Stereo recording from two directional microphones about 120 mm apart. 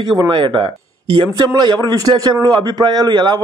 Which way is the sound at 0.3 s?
35° right (ahead or behind).